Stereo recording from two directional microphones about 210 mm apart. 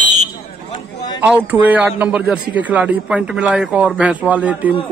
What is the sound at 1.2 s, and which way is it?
Speech, 10° right (ahead or behind).